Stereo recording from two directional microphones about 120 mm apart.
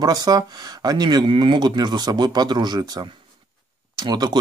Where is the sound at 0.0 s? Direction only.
35° right (ahead or behind).